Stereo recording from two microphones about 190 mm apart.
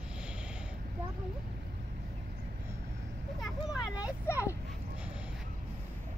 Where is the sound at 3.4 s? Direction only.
5° right (ahead or behind).